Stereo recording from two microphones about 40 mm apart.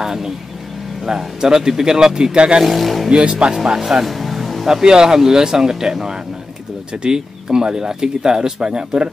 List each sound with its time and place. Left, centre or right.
0.0 s vehicle: centre
1.0 s speech: centre
2.6 s speech: centre
3.1 s speech: right
4.0 s music: centre
4.8 s speech: centre